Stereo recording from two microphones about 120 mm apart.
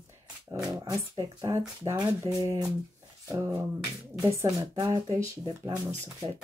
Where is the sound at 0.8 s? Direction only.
30° right (ahead or behind).